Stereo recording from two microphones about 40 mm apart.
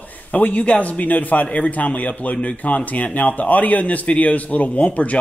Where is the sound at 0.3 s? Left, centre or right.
Left.